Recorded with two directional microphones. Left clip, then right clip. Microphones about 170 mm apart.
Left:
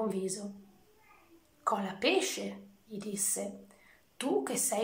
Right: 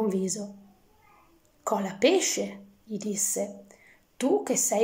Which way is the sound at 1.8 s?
30° right (ahead or behind).